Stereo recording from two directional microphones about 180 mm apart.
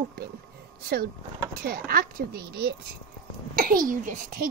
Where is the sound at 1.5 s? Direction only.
55° right (ahead or behind).